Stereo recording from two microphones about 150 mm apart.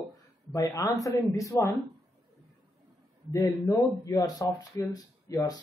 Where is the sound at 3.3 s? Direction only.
20° left (ahead or behind).